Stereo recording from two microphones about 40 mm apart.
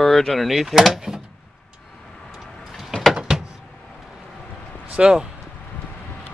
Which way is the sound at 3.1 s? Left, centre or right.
Centre.